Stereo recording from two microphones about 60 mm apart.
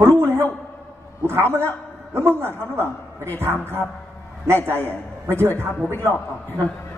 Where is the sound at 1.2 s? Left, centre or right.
Right.